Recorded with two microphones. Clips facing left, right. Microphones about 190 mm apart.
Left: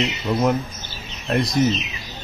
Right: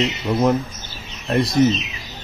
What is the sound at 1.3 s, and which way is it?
Speech, centre (ahead or behind).